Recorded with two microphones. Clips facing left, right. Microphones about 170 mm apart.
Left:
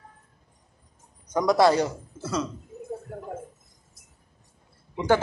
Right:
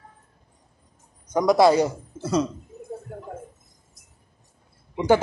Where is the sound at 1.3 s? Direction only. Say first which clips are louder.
Right 3 dB; 10° right (ahead or behind).